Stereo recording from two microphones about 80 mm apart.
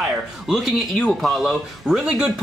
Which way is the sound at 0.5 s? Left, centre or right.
Centre.